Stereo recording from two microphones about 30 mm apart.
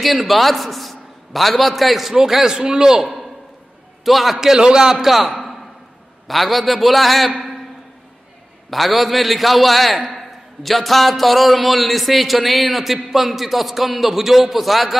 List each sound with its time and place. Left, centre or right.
0.0 s a man's voice: centre
2.1 s a man's voice: centre
4.0 s a man's voice: centre
4.4 s a man's voice: right
6.2 s a man's voice: centre
8.6 s a man's voice: centre